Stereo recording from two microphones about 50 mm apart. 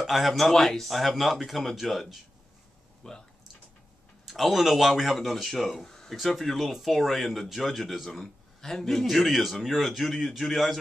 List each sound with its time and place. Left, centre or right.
0.0 s speech: centre
3.0 s speech: centre
4.3 s speech: centre
5.9 s a sound: centre
6.1 s speech: centre